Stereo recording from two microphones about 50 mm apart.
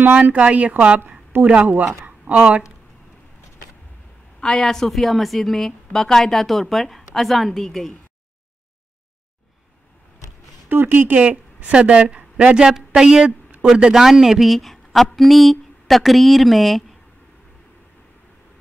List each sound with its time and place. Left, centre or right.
0.0 s a woman's voice: right
1.3 s speech: right
2.0 s a sound: right
4.4 s a woman's voice: centre
10.7 s speech: right
11.1 s a woman's voice: right; by 16.8 s centre